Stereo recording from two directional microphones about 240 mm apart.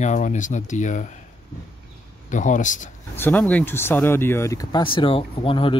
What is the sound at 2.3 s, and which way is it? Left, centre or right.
Speech, left.